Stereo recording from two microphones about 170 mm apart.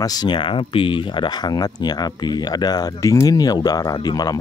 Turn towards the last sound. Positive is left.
turn(degrees=25)  # may be behind; listen again after turning